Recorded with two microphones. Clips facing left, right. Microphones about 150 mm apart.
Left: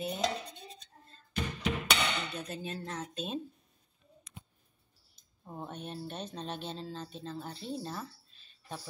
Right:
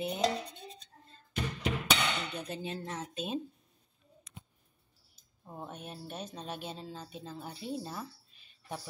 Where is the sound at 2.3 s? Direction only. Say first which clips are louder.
Right 1 dB; 15° right (ahead or behind).